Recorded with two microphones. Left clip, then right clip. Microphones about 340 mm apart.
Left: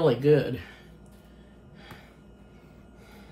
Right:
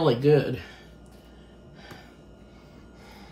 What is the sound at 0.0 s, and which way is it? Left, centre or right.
Speech, centre.